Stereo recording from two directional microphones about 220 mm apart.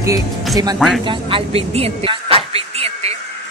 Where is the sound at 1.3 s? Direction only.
25° right (ahead or behind).